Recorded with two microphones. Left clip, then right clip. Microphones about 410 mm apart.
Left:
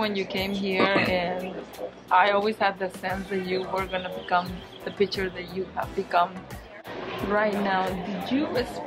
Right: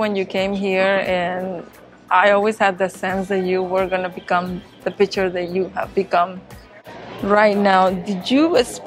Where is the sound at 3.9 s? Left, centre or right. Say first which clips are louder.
Right 6 dB; right.